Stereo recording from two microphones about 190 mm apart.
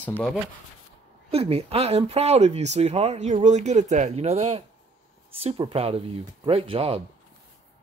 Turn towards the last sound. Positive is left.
turn(degrees=-30)  # may be behind; listen again after turning